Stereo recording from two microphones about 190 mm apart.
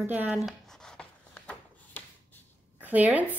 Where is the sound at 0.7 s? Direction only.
5° left (ahead or behind).